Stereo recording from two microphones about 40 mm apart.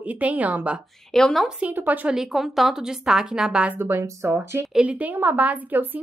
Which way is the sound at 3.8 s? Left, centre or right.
Right.